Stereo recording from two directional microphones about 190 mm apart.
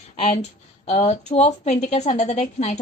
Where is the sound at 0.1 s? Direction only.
35° left (ahead or behind).